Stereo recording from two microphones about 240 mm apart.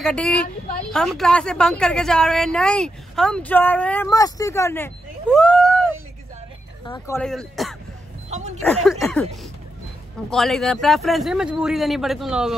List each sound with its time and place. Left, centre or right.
0.0 s a woman's voice: centre
7.2 s a woman's voice: centre
8.3 s a sound: right
8.6 s a woman's voice: centre